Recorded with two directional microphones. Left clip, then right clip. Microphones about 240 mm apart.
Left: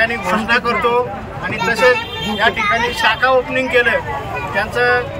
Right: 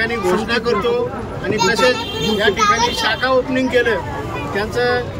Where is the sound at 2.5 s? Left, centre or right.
Right.